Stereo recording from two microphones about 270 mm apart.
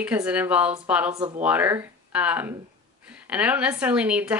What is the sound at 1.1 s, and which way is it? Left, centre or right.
Speech, right.